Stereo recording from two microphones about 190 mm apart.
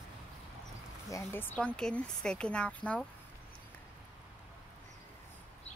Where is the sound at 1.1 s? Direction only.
10° left (ahead or behind).